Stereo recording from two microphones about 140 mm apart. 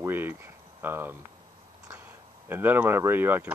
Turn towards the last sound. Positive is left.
turn(degrees=-15)  # may be behind; listen again after turning